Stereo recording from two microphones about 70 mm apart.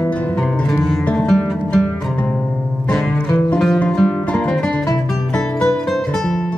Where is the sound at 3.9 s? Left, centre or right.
Centre.